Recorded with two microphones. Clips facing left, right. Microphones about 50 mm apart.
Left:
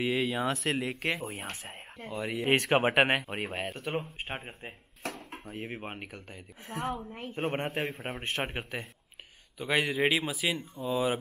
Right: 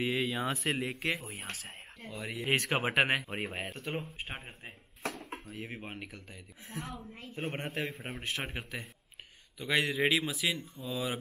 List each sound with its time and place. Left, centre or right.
0.0 s speech: centre
1.2 s a woman's voice: left
2.4 s a woman's voice: centre
5.4 s a woman's voice: left
9.6 s speech: centre
10.6 s a woman's voice: left